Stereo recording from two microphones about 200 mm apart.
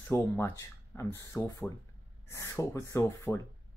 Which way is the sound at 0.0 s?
10° left (ahead or behind).